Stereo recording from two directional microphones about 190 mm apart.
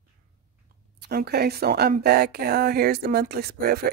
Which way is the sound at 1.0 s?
60° right (ahead or behind).